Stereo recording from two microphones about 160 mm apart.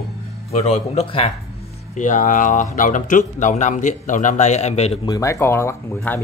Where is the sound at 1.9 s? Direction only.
50° left (ahead or behind).